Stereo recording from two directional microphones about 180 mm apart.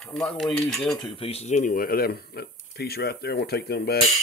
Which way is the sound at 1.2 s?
35° left (ahead or behind).